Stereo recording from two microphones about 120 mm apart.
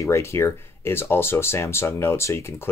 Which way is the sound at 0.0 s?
25° left (ahead or behind).